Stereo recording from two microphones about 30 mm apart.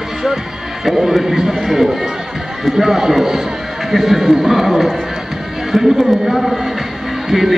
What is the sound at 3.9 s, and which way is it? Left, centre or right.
A man's voice, centre.